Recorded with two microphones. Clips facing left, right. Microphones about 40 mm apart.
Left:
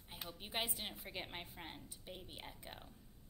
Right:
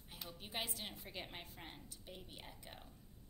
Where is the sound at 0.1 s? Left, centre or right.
Centre.